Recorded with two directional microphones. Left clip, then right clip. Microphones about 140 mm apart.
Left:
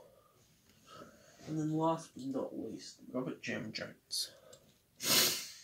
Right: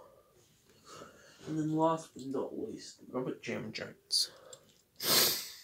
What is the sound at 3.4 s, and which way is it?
Speech, 55° right (ahead or behind).